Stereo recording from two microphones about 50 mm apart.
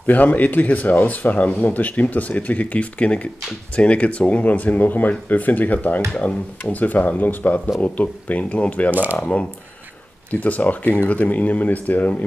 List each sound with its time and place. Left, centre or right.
0.0 s speech: left
8.9 s speech: right
9.2 s speech: left